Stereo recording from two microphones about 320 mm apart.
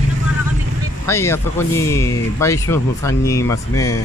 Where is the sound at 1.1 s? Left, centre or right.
Centre.